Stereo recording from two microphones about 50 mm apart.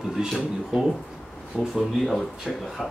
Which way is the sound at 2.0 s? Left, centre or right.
Centre.